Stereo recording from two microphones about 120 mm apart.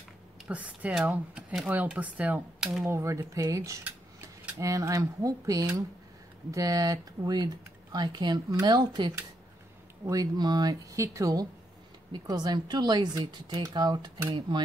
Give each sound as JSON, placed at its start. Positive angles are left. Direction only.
{"t": 0.5, "sound": "speech", "side_deg": -10}